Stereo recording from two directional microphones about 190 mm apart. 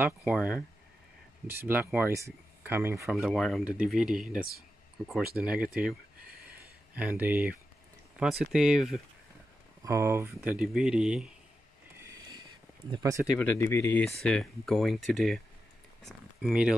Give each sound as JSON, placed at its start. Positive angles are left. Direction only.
{"t": 0.0, "sound": "speech", "side_deg": -5}
{"t": 3.3, "sound": "speech", "side_deg": 0}
{"t": 7.0, "sound": "speech", "side_deg": -10}
{"t": 9.8, "sound": "speech", "side_deg": -15}
{"t": 12.1, "sound": "a sound", "side_deg": -20}
{"t": 12.9, "sound": "speech", "side_deg": -15}
{"t": 13.4, "sound": "speech", "side_deg": 10}